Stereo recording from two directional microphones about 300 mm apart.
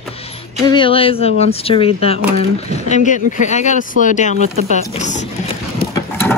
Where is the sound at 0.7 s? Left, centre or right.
Centre.